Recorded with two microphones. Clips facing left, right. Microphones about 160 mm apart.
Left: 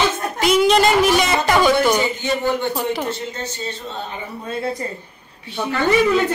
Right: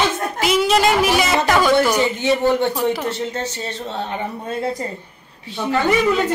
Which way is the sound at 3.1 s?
75° right (ahead or behind).